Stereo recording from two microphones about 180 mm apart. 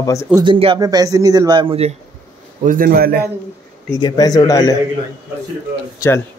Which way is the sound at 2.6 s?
50° right (ahead or behind).